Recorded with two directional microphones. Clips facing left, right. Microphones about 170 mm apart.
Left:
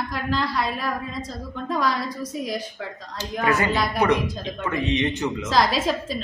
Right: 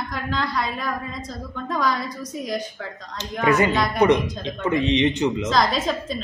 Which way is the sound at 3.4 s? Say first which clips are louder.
Right 3 dB; 20° right (ahead or behind).